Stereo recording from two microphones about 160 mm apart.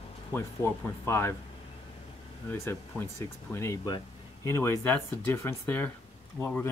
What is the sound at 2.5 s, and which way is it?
Speech, 15° left (ahead or behind).